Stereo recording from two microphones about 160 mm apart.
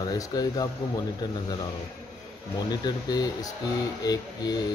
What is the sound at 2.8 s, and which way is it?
Speech, 25° left (ahead or behind).